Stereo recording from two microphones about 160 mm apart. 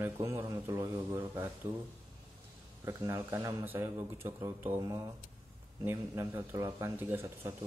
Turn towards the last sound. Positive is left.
turn(degrees=-15)  # may be behind; listen again after turning